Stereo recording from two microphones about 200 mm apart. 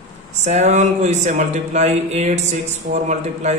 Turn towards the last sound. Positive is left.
turn(degrees=-35)  # may be behind; listen again after turning